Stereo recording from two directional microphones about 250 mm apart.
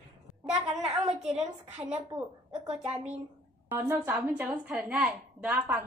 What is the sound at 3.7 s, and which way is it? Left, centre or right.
A woman's voice, centre.